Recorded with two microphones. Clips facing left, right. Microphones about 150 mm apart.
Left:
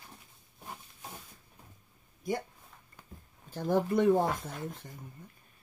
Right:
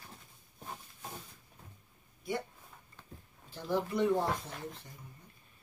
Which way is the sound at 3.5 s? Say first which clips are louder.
Left 5 dB; 50° left (ahead or behind).